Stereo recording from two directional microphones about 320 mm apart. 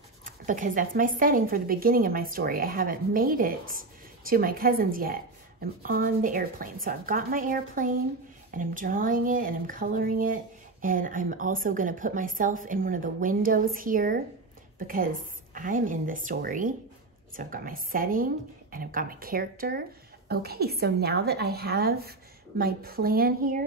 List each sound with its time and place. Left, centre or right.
0.2 s a woman's voice: right